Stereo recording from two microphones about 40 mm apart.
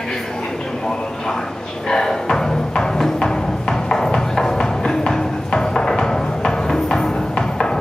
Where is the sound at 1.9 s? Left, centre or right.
Centre.